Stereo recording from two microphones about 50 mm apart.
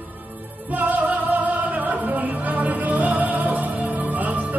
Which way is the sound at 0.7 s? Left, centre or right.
Right.